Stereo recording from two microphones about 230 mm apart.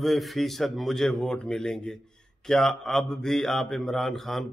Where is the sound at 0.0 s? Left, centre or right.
Centre.